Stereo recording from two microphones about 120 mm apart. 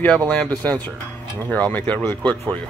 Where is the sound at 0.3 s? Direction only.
10° left (ahead or behind).